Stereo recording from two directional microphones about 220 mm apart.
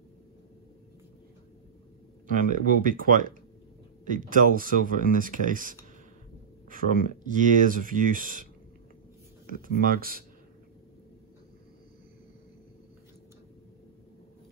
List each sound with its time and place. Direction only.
2.2 s speech: 40° right (ahead or behind)
9.6 s speech: 40° right (ahead or behind)